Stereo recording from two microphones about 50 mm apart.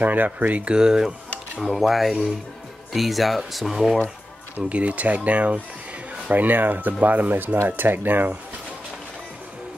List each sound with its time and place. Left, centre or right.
0.0 s speech: right
0.7 s speech: centre
1.6 s speech: centre
4.6 s speech: right